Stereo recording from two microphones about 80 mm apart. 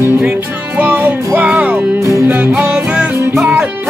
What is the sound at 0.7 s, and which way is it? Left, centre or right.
Music, right.